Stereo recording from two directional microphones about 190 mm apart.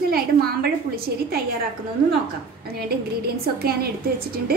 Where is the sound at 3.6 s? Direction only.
55° right (ahead or behind).